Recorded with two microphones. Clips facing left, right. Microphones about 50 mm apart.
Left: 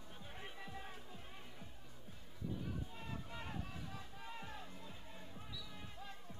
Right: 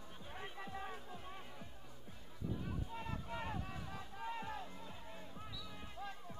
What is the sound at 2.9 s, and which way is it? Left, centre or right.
Music, centre.